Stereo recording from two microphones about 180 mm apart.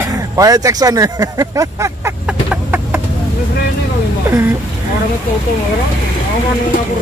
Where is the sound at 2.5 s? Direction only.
10° right (ahead or behind).